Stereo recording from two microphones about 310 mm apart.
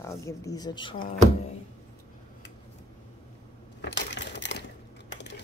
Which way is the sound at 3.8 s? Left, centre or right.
Left.